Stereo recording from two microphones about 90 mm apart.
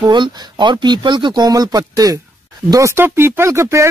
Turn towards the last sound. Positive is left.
turn(degrees=-35)  # may be behind; listen again after turning